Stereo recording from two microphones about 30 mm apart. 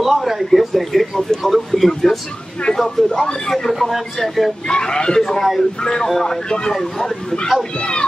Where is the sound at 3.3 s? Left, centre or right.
Centre.